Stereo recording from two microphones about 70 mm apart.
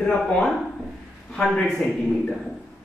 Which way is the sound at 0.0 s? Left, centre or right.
Centre.